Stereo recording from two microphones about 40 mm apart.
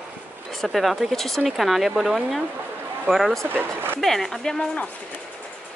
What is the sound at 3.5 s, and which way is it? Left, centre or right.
Speech, right.